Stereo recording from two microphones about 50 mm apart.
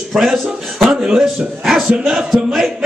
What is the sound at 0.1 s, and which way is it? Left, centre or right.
Speech, centre.